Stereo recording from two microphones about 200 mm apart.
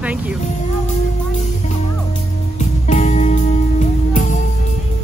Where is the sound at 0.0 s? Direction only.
5° right (ahead or behind).